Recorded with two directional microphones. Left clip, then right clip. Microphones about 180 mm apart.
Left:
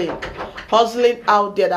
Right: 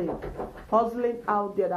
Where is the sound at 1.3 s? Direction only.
30° left (ahead or behind).